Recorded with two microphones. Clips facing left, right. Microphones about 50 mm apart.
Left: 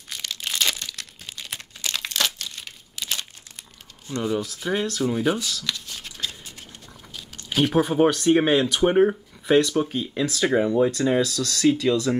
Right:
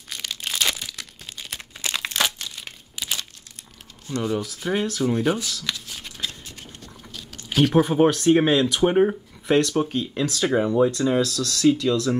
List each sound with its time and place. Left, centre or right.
0.1 s crumpling: centre
1.8 s a sound: centre
2.4 s crumpling: centre
4.2 s speech: centre
5.6 s a sound: centre
7.5 s speech: centre
8.3 s speech: centre